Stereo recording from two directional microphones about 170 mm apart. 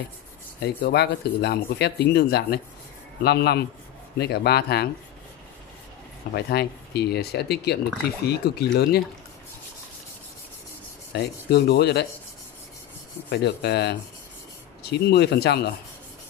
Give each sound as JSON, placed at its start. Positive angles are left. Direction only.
{"t": 0.6, "sound": "speech", "side_deg": 75}
{"t": 6.3, "sound": "speech", "side_deg": 75}
{"t": 11.1, "sound": "speech", "side_deg": 75}
{"t": 13.3, "sound": "speech", "side_deg": 80}